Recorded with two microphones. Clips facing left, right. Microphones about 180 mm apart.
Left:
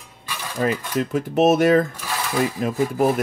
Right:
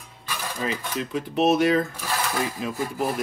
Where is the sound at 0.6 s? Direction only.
50° left (ahead or behind).